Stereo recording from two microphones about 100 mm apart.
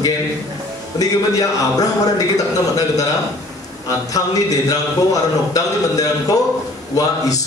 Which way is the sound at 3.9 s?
35° left (ahead or behind).